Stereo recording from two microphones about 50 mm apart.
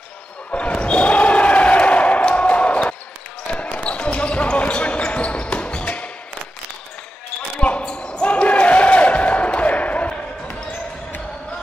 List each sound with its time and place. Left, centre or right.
0.5 s basketball bounce: left
7.6 s basketball bounce: left